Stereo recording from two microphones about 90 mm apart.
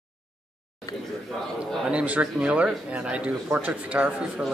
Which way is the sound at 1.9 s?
15° right (ahead or behind).